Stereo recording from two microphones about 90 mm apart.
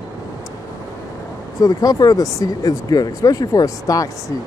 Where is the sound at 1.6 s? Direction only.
45° left (ahead or behind).